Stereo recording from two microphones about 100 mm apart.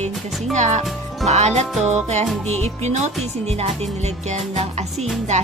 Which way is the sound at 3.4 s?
90° right.